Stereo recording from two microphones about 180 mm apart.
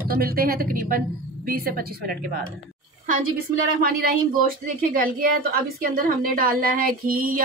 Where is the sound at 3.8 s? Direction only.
55° right (ahead or behind).